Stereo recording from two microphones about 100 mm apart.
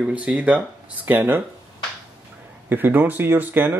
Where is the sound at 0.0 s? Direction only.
15° right (ahead or behind).